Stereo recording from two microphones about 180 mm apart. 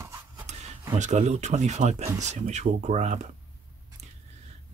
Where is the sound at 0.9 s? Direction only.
40° right (ahead or behind).